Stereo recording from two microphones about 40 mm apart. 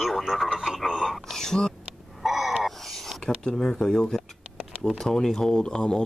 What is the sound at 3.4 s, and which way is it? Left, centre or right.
Speech, centre.